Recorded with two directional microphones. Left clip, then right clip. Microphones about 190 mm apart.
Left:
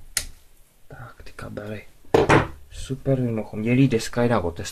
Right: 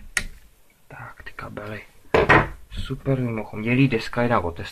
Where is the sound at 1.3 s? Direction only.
30° left (ahead or behind).